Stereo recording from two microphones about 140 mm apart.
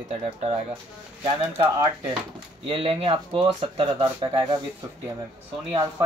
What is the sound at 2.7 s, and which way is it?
Speech, 40° right (ahead or behind).